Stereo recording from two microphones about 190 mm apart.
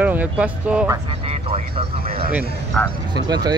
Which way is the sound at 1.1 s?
30° right (ahead or behind).